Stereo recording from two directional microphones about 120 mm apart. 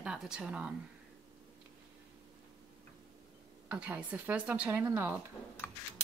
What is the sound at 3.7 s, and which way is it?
Speech, 15° right (ahead or behind).